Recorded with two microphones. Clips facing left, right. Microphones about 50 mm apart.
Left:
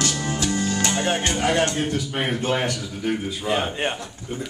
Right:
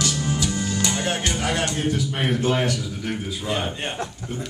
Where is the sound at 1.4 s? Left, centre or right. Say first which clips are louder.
Left 3 dB; centre.